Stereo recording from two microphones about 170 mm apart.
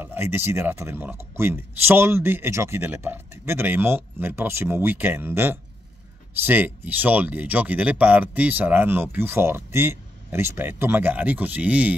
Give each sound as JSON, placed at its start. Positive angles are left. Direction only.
{"t": 0.0, "sound": "speech", "side_deg": -10}